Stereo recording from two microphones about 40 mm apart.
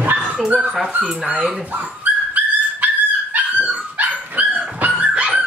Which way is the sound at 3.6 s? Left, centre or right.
Right.